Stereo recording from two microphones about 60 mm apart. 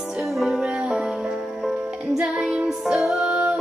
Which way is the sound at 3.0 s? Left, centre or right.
Centre.